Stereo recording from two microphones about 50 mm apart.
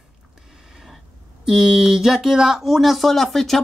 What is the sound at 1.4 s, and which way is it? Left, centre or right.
Speech, centre.